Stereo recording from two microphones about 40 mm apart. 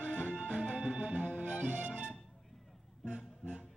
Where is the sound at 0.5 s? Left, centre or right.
Right.